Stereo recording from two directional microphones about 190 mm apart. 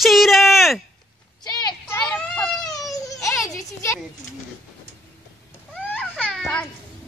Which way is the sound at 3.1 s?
15° left (ahead or behind).